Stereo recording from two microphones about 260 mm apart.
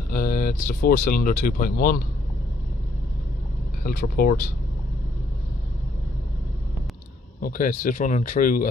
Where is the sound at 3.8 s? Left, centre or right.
Left.